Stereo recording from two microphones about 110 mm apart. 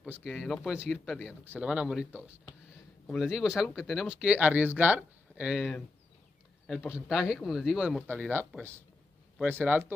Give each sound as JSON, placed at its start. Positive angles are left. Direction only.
{"t": 0.0, "sound": "speech", "side_deg": -10}
{"t": 6.7, "sound": "speech", "side_deg": -5}
{"t": 8.1, "sound": "speech", "side_deg": -20}